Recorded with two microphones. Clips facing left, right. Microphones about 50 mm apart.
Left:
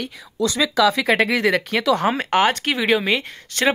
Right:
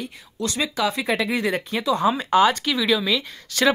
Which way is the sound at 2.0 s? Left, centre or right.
Left.